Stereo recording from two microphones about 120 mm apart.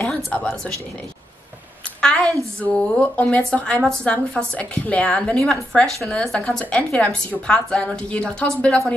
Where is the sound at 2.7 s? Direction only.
10° left (ahead or behind).